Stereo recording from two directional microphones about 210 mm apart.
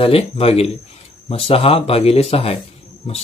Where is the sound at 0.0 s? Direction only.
30° left (ahead or behind).